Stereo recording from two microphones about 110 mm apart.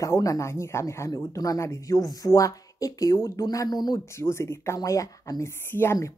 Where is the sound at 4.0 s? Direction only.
25° left (ahead or behind).